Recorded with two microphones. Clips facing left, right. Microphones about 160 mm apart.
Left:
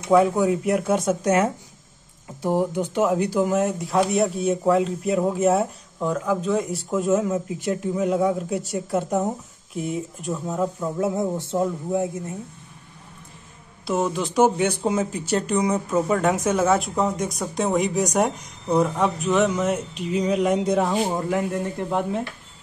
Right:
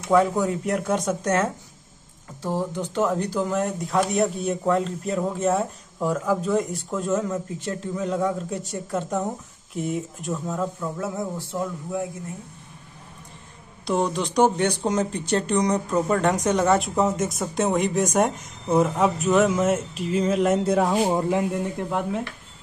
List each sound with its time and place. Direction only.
0.1 s speech: 5° left (ahead or behind)
5.9 s speech: 5° right (ahead or behind)
10.4 s a man's voice: 10° left (ahead or behind)
13.8 s speech: 5° left (ahead or behind)
21.2 s speech: 20° right (ahead or behind)
21.8 s speech: 5° left (ahead or behind)